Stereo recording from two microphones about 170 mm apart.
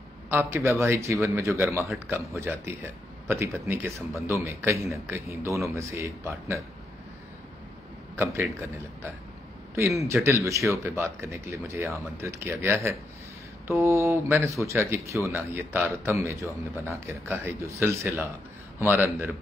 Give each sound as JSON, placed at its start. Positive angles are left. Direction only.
{"t": 0.3, "sound": "speech", "side_deg": -15}
{"t": 8.2, "sound": "speech", "side_deg": -15}